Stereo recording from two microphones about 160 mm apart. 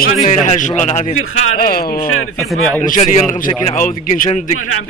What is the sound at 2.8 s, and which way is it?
A man's voice, 50° left (ahead or behind).